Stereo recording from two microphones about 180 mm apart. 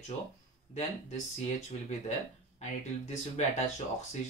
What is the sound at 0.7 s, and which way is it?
Speech, 40° left (ahead or behind).